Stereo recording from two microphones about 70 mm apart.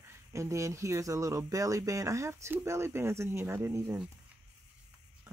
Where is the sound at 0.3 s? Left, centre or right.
Right.